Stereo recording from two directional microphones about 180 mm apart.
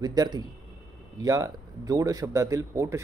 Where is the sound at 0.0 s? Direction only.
20° right (ahead or behind).